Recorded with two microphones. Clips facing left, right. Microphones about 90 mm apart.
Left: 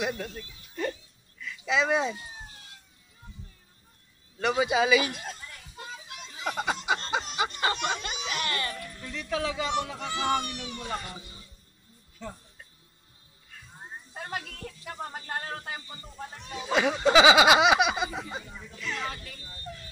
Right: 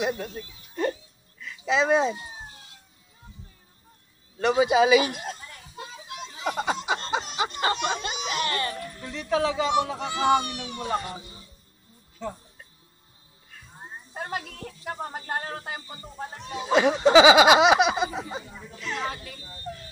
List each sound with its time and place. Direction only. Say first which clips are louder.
0.0 s speech: right 3 dB; 25° right (ahead or behind)
4.4 s children playing: right 5 dB; 25° right (ahead or behind)
10.8 s speech: right 9 dB; 30° right (ahead or behind)
14.1 s speech: right 4 dB; 30° right (ahead or behind)